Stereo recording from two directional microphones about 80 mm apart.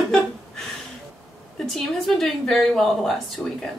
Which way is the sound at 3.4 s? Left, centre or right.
Left.